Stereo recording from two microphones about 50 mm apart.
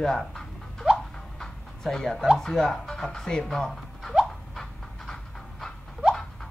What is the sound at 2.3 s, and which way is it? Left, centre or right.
Speech, centre.